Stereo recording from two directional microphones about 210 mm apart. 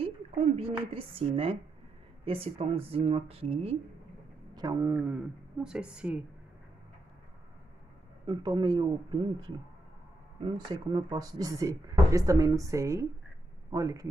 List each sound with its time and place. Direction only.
0.6 s speech: 25° right (ahead or behind)
4.6 s speech: 15° right (ahead or behind)
8.3 s speech: 20° right (ahead or behind)
10.4 s a man's voice: 25° right (ahead or behind)